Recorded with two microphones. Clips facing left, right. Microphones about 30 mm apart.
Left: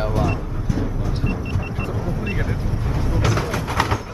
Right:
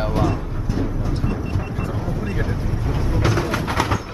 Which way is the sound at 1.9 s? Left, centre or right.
Centre.